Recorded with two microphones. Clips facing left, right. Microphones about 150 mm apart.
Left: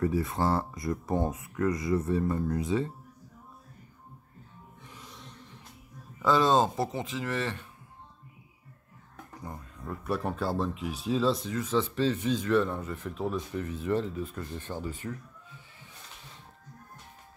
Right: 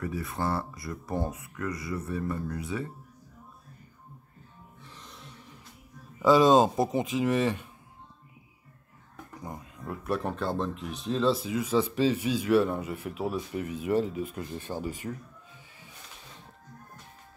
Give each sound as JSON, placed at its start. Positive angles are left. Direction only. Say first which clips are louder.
{"t": 0.0, "sound": "speech", "louder": "left 4 dB", "side_deg": 25}
{"t": 4.8, "sound": "music", "louder": "left 1 dB", "side_deg": 10}
{"t": 6.1, "sound": "speech", "louder": "right 4 dB", "side_deg": -10}
{"t": 9.4, "sound": "speech", "louder": "right 1 dB", "side_deg": -15}
{"t": 10.0, "sound": "speech", "louder": "even", "side_deg": 0}